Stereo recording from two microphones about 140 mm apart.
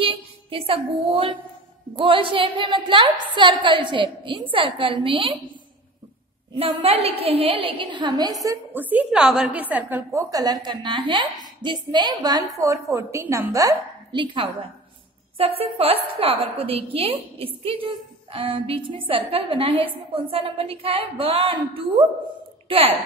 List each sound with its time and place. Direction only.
0.0 s a woman's voice: 40° right (ahead or behind)
6.5 s a woman's voice: 45° right (ahead or behind); by 8.5 s 25° right (ahead or behind)
8.7 s a woman's voice: 10° right (ahead or behind)
10.3 s a woman's voice: 25° right (ahead or behind)
14.1 s a woman's voice: 35° right (ahead or behind)